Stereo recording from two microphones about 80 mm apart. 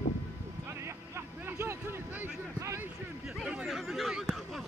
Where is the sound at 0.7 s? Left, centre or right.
Right.